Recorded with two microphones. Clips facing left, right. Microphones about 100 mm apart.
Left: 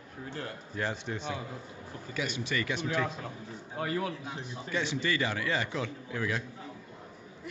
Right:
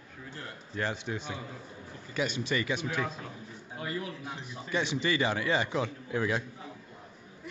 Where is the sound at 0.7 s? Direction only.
Centre (ahead or behind).